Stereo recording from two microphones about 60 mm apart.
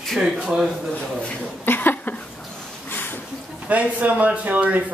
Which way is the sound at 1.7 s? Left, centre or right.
Left.